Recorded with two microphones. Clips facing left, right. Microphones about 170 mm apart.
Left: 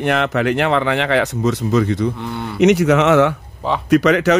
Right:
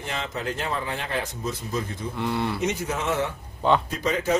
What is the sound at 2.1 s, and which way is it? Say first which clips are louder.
Speech: even; centre (ahead or behind).